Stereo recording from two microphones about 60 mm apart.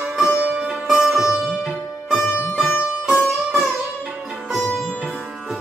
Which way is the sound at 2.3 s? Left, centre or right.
Left.